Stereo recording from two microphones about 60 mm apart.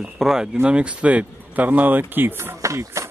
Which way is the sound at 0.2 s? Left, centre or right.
Centre.